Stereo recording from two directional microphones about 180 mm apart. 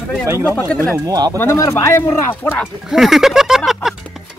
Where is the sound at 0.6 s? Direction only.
5° left (ahead or behind).